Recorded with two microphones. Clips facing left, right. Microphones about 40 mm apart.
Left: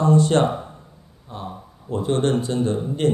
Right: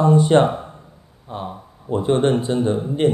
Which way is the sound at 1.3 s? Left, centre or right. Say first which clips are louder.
Right 4 dB; right.